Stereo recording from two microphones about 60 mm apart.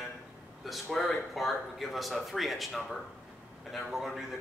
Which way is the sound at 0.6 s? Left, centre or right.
Centre.